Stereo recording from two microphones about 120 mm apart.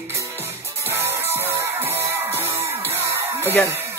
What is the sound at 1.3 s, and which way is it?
Music, 20° right (ahead or behind).